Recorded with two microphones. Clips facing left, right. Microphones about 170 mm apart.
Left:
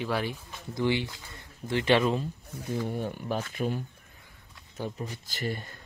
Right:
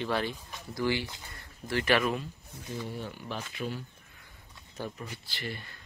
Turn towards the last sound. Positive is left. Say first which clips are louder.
# left 6 dB
turn(degrees=45)  # may be behind; listen again after turning